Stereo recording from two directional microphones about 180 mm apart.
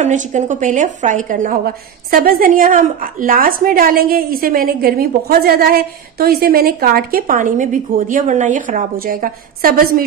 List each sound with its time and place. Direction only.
0.0 s a woman's voice: 45° right (ahead or behind)